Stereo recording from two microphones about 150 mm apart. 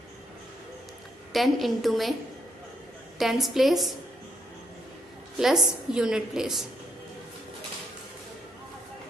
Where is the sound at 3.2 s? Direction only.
Centre (ahead or behind).